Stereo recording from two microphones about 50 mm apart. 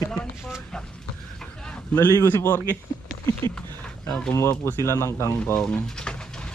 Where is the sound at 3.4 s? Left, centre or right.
Left.